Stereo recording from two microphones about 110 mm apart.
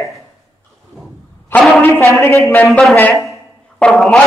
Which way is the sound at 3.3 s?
5° left (ahead or behind).